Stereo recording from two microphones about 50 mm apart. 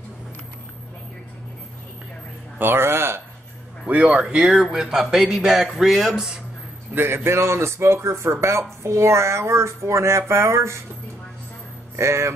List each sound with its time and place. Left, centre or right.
2.6 s speech: right
3.9 s speech: right
4.4 s speech: centre
6.9 s a man's voice: right
7.2 s speech: right
12.0 s speech: right